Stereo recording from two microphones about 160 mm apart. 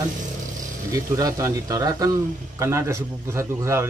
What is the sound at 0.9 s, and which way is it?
A man's voice, 20° right (ahead or behind).